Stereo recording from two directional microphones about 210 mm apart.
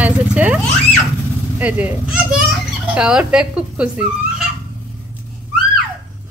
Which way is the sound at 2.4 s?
5° right (ahead or behind).